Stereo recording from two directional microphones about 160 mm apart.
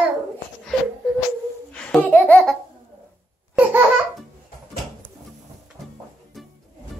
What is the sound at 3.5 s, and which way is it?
Laughter, 10° right (ahead or behind).